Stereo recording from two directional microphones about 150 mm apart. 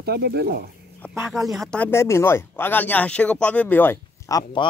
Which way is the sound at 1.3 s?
Centre (ahead or behind).